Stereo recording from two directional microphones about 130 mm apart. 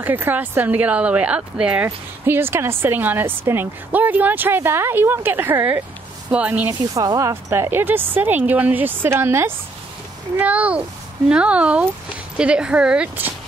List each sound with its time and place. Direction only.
0.0 s speech: 15° right (ahead or behind)
6.7 s speech: 30° right (ahead or behind); by 13.3 s 10° right (ahead or behind)